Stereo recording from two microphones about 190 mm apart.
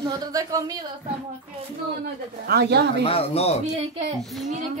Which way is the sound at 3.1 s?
30° left (ahead or behind).